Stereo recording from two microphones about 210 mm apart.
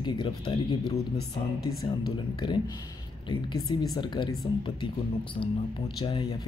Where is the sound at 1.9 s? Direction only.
25° left (ahead or behind).